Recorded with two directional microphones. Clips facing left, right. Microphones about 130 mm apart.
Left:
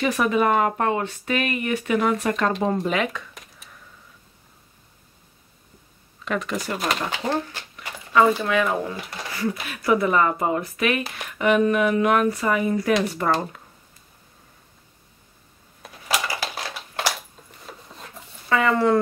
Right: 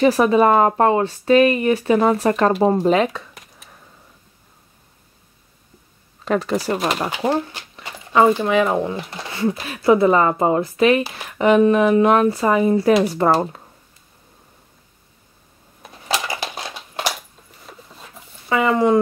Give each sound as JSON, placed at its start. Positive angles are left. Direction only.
{"t": 0.0, "sound": "speech", "side_deg": -30}
{"t": 6.2, "sound": "speech", "side_deg": -35}
{"t": 7.3, "sound": "zipper", "side_deg": -25}
{"t": 8.4, "sound": "speech", "side_deg": -25}
{"t": 16.1, "sound": "a sound", "side_deg": -25}
{"t": 17.6, "sound": "filing", "side_deg": 0}
{"t": 18.5, "sound": "speech", "side_deg": -20}